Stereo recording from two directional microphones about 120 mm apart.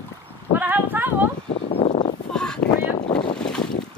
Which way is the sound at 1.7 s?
70° left (ahead or behind).